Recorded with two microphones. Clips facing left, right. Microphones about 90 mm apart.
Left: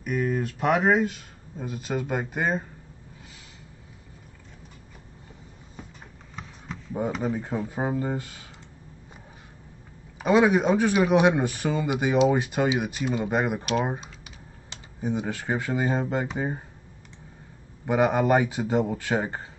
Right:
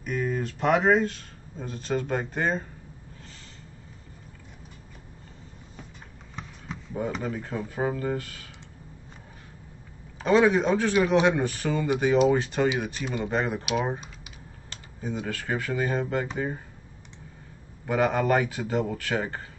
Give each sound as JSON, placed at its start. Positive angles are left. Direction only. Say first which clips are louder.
{"t": 0.0, "sound": "speech", "louder": "left 2 dB", "side_deg": 5}
{"t": 6.3, "sound": "a sound", "louder": "even", "side_deg": 0}
{"t": 7.2, "sound": "a man's voice", "louder": "left 3 dB", "side_deg": 15}
{"t": 10.1, "sound": "a man's voice", "louder": "left 1 dB", "side_deg": 10}
{"t": 13.9, "sound": "typing", "louder": "left 1 dB", "side_deg": -5}
{"t": 14.7, "sound": "a man's voice", "louder": "left 4 dB", "side_deg": 20}
{"t": 17.8, "sound": "a man's voice", "louder": "left 2 dB", "side_deg": 20}